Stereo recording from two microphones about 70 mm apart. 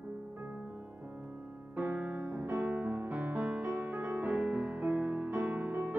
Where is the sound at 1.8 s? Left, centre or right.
Centre.